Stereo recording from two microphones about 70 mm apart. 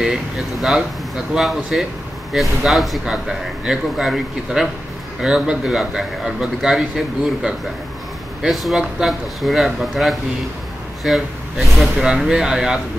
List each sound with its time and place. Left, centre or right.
0.0 s a man's voice: centre